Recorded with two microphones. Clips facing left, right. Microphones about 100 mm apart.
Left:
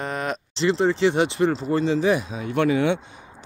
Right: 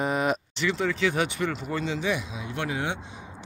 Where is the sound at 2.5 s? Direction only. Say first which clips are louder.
Left 10 dB; 65° left (ahead or behind).